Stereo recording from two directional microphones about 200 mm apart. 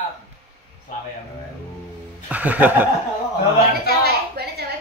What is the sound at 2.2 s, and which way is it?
Speech, 10° right (ahead or behind).